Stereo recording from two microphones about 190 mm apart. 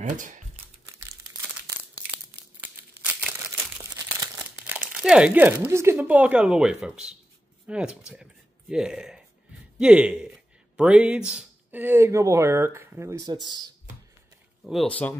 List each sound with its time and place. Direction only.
0.0 s speech: 40° right (ahead or behind)
4.2 s speech: 5° right (ahead or behind); by 13.7 s 20° right (ahead or behind)
14.7 s speech: 5° left (ahead or behind)